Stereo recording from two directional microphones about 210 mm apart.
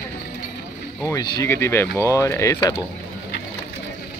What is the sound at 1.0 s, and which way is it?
Speech, 15° left (ahead or behind).